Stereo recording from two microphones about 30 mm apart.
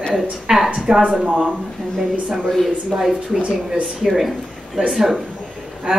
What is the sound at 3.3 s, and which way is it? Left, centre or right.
Speech, right.